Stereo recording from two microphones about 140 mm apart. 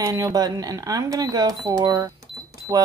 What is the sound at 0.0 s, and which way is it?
A woman's voice, 25° right (ahead or behind).